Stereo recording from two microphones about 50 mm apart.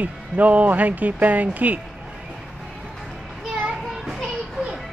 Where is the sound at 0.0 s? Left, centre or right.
Right.